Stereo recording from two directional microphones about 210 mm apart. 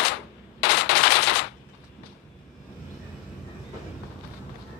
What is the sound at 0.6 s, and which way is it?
Machine gun, 50° left (ahead or behind).